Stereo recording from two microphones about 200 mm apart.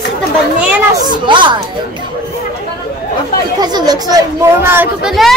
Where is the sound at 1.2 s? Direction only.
25° right (ahead or behind).